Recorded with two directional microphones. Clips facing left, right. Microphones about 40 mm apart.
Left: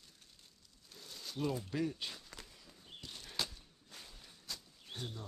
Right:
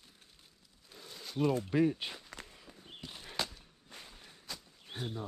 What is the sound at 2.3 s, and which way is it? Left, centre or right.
Walk, right.